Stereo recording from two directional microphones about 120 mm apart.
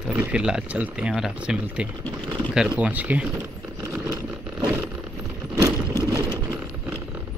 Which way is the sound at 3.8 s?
20° right (ahead or behind).